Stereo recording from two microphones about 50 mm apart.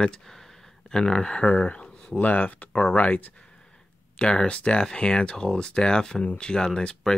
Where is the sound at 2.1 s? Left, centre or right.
Left.